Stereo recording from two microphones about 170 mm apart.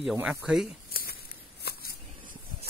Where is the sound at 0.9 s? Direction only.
60° left (ahead or behind).